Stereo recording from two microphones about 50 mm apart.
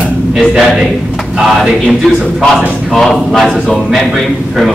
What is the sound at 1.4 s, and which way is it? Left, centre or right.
A man's voice, centre.